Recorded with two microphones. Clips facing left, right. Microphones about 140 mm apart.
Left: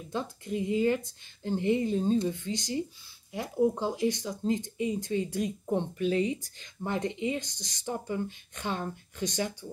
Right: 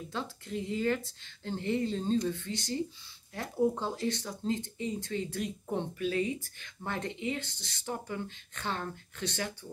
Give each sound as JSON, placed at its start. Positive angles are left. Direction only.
{"t": 0.1, "sound": "speech", "side_deg": 15}